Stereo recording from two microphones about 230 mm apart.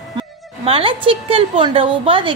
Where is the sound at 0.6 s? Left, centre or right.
Right.